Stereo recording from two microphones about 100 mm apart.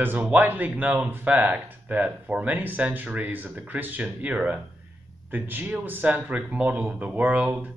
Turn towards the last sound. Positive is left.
turn(degrees=-15)  # may be behind; listen again after turning